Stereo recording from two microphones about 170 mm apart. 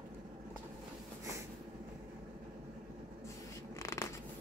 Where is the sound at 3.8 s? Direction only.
15° left (ahead or behind).